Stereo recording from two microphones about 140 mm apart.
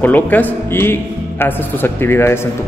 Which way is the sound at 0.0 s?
10° left (ahead or behind).